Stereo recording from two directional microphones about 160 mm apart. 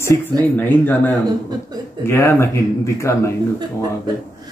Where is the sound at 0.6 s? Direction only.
10° left (ahead or behind).